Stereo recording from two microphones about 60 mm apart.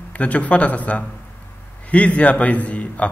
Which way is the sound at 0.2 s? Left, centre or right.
Left.